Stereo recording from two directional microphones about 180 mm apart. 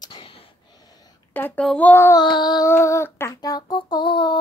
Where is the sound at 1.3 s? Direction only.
10° left (ahead or behind).